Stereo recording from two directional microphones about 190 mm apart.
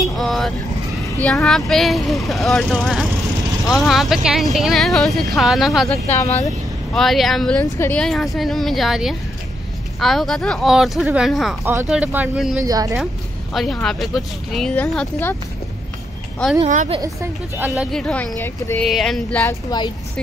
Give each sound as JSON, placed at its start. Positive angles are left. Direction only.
{"t": 0.1, "sound": "vehicle", "side_deg": 0}
{"t": 1.2, "sound": "speech", "side_deg": 5}
{"t": 5.9, "sound": "speech", "side_deg": 35}
{"t": 6.9, "sound": "speech", "side_deg": 0}
{"t": 11.6, "sound": "speech", "side_deg": -15}
{"t": 12.6, "sound": "speech", "side_deg": -20}
{"t": 12.9, "sound": "speech", "side_deg": 0}
{"t": 16.6, "sound": "a woman's voice", "side_deg": -40}
{"t": 16.9, "sound": "speech", "side_deg": -15}
{"t": 17.9, "sound": "speech", "side_deg": 5}